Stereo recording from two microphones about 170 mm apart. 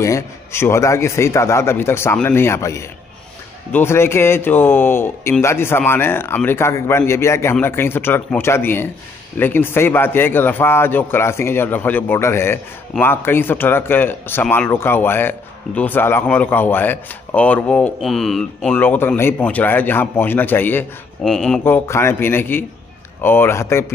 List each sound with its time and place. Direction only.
0.0 s speech: 15° left (ahead or behind)
21.6 s speech: 15° left (ahead or behind)